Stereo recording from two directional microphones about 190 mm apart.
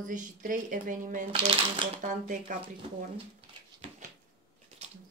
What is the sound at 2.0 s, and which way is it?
Speech, 40° right (ahead or behind).